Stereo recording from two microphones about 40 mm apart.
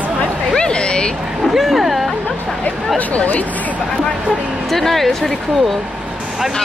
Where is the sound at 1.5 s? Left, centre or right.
Centre.